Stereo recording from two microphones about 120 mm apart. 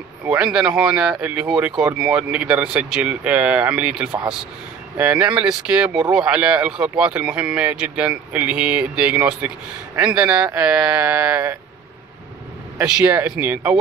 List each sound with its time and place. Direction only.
0.2 s a man's voice: 10° right (ahead or behind)
12.8 s a man's voice: 5° right (ahead or behind)